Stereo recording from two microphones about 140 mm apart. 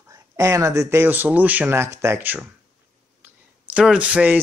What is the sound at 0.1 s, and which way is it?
Speech, 25° right (ahead or behind).